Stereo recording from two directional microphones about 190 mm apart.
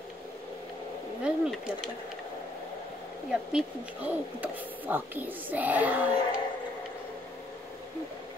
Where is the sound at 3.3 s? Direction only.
5° right (ahead or behind).